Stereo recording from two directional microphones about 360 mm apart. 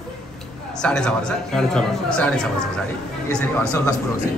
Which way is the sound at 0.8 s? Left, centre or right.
Centre.